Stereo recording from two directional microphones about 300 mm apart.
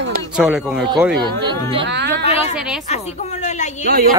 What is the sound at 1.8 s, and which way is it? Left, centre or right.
Speech, right.